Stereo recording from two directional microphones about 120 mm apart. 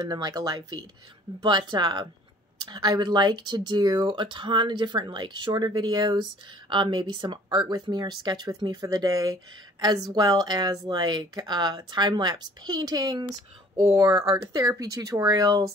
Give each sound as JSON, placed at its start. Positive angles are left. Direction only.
{"t": 0.1, "sound": "speech", "side_deg": -35}
{"t": 13.7, "sound": "speech", "side_deg": -25}